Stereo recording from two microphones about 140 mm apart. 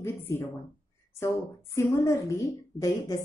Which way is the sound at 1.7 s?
20° left (ahead or behind).